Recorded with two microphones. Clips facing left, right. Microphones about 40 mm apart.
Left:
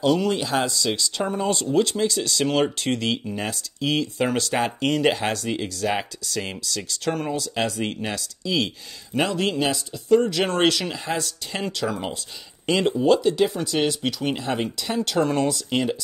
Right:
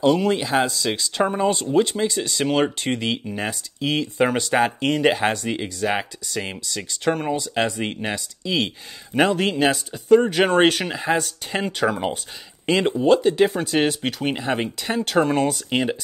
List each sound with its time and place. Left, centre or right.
0.0 s speech: centre